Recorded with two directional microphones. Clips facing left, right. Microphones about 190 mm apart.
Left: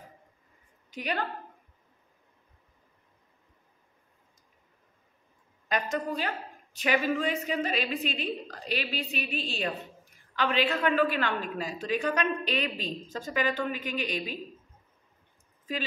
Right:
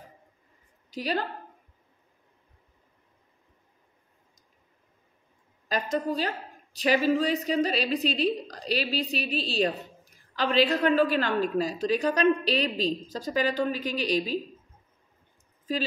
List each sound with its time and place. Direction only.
0.8 s a woman's voice: 35° right (ahead or behind)
5.7 s a woman's voice: 35° right (ahead or behind)